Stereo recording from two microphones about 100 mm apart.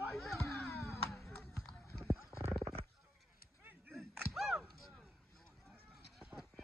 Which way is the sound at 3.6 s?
20° right (ahead or behind).